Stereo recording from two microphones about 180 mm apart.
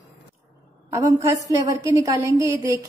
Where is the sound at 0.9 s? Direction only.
15° right (ahead or behind).